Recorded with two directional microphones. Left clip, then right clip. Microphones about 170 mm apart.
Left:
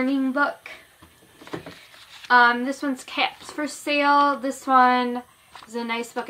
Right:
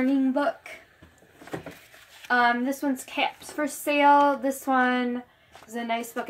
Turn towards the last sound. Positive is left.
turn(degrees=5)  # may be behind; listen again after turning